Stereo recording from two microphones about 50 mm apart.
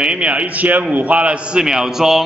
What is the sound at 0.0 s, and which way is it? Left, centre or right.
A man's voice, right.